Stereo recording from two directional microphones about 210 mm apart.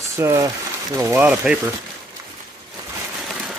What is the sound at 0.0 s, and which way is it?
Speech, 15° right (ahead or behind).